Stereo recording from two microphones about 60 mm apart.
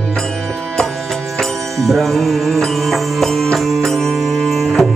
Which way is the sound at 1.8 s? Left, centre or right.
Centre.